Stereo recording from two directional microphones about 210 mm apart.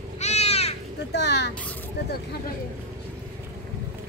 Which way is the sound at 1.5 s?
5° left (ahead or behind).